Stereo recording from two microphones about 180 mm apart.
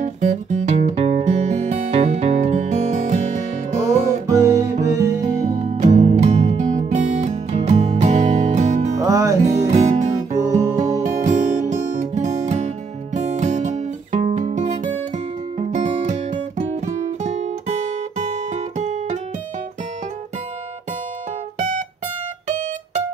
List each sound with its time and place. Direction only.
0.0 s music: 40° right (ahead or behind)
4.3 s music: 15° right (ahead or behind)
5.2 s music: 40° right (ahead or behind)
8.9 s music: 20° right (ahead or behind)
9.7 s music: 40° right (ahead or behind)
10.4 s music: 15° right (ahead or behind)
10.9 s music: 40° right (ahead or behind)